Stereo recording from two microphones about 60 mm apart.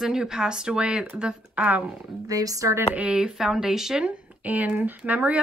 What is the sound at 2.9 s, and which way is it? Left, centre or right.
Speech, right.